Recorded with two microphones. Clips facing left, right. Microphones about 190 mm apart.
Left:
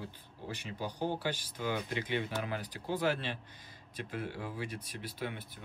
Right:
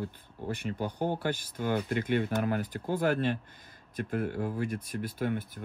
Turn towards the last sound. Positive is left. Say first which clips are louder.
# right 8 dB
turn(degrees=-50)  # may be behind; listen again after turning